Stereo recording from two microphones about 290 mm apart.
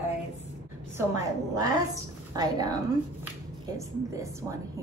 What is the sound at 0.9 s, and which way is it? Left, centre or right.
A woman's voice, centre.